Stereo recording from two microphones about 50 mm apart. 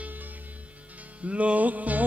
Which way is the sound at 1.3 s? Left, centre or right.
Right.